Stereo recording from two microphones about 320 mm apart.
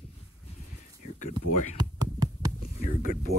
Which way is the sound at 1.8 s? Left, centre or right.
Centre.